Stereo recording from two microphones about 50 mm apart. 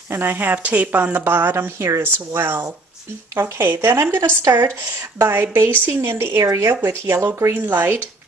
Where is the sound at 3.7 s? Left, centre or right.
Right.